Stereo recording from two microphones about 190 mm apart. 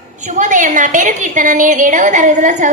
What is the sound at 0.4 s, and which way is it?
A woman's voice, 40° right (ahead or behind).